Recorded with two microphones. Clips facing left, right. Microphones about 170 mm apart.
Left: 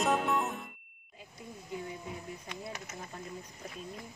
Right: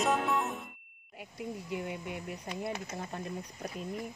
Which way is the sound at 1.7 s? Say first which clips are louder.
Even; 75° right (ahead or behind).